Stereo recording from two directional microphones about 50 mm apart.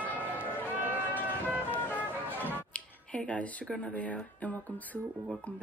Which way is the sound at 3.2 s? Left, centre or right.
Left.